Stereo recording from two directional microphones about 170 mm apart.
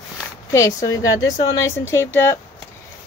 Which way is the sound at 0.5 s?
20° left (ahead or behind).